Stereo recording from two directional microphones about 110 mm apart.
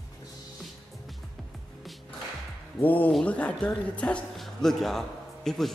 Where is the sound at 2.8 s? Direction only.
15° left (ahead or behind).